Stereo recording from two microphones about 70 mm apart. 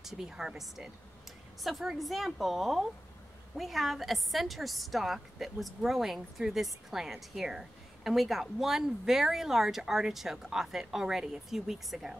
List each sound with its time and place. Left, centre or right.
0.0 s a woman's voice: centre